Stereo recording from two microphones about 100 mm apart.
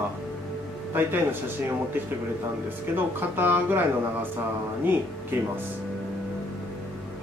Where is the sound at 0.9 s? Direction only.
20° right (ahead or behind).